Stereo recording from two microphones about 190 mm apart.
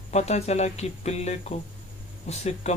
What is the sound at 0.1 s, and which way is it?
Speech, 35° left (ahead or behind).